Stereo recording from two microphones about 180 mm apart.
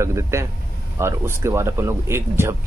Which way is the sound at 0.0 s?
15° right (ahead or behind).